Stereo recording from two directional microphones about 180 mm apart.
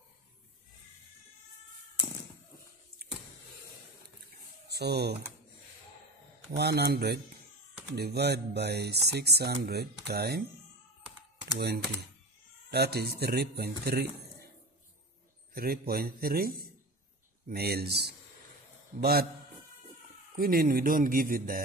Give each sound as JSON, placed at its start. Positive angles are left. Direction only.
{"t": 4.6, "sound": "speech", "side_deg": -65}
{"t": 6.5, "sound": "speech", "side_deg": -65}
{"t": 11.5, "sound": "speech", "side_deg": -65}
{"t": 15.5, "sound": "a man's voice", "side_deg": -55}
{"t": 20.3, "sound": "speech", "side_deg": -55}